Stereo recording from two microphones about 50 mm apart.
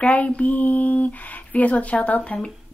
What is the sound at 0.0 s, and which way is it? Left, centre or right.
Speech, left.